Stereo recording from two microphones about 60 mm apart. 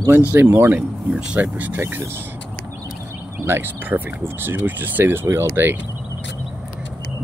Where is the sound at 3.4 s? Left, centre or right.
Right.